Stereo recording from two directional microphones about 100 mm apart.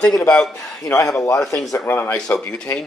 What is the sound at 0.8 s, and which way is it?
Speech, 30° left (ahead or behind).